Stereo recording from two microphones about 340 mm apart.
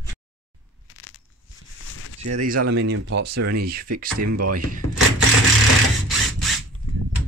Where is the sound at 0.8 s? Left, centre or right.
Left.